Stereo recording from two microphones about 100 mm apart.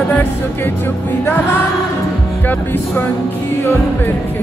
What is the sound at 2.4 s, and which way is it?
Music, 20° left (ahead or behind).